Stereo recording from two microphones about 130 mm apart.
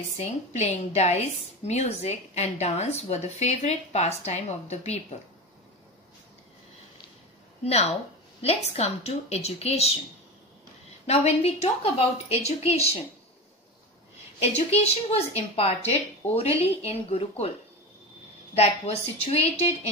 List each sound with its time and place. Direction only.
0.2 s a woman's voice: 55° left (ahead or behind)
7.6 s speech: 50° left (ahead or behind)
11.1 s speech: 55° left (ahead or behind)
14.4 s speech: 50° left (ahead or behind)
18.5 s speech: 55° left (ahead or behind)